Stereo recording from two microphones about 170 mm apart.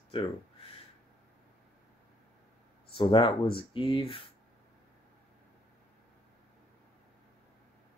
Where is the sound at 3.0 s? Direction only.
30° left (ahead or behind).